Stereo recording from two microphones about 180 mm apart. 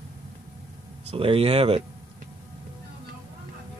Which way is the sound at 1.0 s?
30° right (ahead or behind).